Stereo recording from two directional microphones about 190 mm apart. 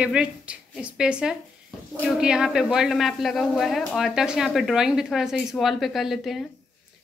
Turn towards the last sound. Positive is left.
turn(degrees=0)  # may be behind; listen again after turning